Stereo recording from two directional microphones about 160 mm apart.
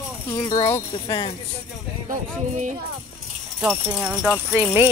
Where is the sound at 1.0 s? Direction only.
30° left (ahead or behind).